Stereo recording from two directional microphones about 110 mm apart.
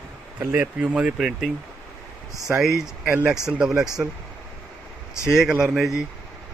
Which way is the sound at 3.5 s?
5° right (ahead or behind).